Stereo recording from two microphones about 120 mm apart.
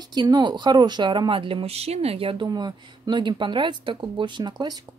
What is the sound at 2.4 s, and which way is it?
Speech, 35° right (ahead or behind).